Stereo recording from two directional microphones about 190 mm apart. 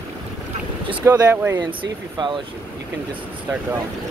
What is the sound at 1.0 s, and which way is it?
Speech, 15° right (ahead or behind).